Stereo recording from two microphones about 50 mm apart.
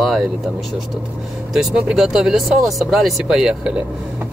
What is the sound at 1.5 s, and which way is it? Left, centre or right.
Speech, centre.